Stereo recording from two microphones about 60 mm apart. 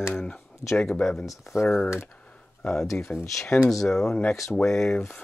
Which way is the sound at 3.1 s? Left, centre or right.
Centre.